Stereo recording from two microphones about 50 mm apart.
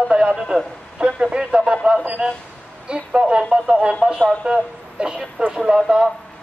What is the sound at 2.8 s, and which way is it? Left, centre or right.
A man's voice, centre.